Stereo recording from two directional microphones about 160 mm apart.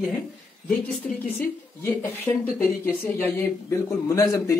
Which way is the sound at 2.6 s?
10° left (ahead or behind).